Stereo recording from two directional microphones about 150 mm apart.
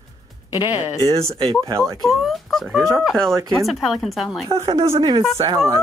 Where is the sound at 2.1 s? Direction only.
Centre (ahead or behind).